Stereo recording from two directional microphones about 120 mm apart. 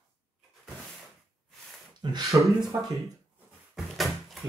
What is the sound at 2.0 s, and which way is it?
Speech, 35° right (ahead or behind).